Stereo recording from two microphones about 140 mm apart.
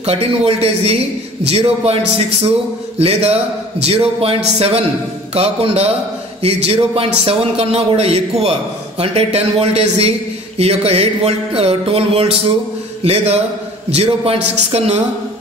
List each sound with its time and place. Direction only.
0.0 s a man's voice: 45° right (ahead or behind)